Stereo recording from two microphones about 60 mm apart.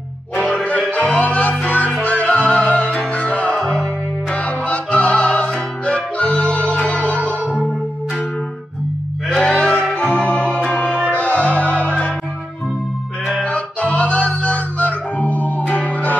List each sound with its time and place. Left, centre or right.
0.9 s music: left
9.3 s music: centre
13.4 s music: centre